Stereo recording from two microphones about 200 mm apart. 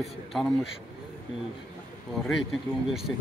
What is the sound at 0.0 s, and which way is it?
Speech, centre (ahead or behind).